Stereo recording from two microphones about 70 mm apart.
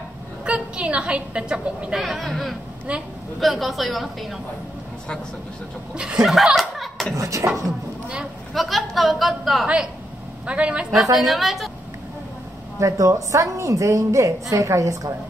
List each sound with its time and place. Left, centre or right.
0.5 s a woman's voice: centre
2.0 s speech: centre
2.9 s a man's voice: centre
3.3 s speech: centre
6.2 s chuckle: centre
7.2 s a woman's voice: right
8.5 s speech: centre
10.4 s a man's voice: centre
11.1 s speech: centre
12.7 s a woman's voice: right